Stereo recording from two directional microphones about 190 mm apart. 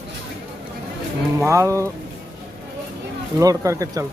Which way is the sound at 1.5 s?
15° right (ahead or behind).